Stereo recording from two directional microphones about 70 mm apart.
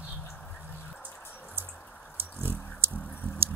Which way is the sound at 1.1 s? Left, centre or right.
Left.